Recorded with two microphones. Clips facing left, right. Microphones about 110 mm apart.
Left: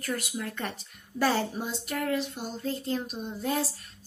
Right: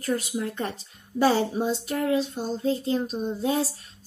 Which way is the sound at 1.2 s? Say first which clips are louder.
Right 5 dB; 20° right (ahead or behind).